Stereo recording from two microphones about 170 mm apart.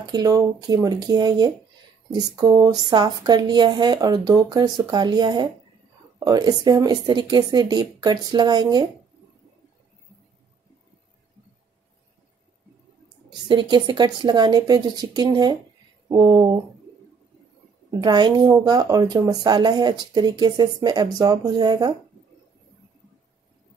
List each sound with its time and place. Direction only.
0.0 s speech: 25° right (ahead or behind)
13.5 s speech: 25° right (ahead or behind)
18.0 s speech: 25° right (ahead or behind)